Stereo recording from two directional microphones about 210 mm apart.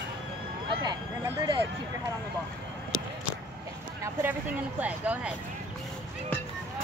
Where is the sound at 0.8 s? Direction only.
20° right (ahead or behind).